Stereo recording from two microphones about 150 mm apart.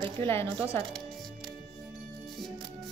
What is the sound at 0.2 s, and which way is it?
Speech, 15° left (ahead or behind).